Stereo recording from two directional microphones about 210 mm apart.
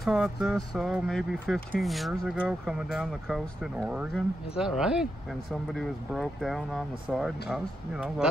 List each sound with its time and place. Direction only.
0.0 s speech: centre (ahead or behind)